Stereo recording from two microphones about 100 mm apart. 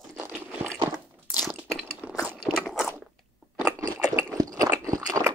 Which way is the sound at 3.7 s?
35° right (ahead or behind).